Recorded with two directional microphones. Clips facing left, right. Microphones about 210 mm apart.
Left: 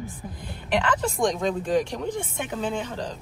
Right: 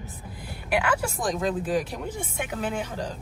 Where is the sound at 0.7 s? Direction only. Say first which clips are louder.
Left 1 dB; 10° right (ahead or behind).